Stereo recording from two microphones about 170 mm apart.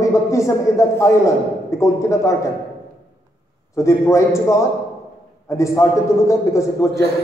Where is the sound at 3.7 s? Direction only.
20° left (ahead or behind).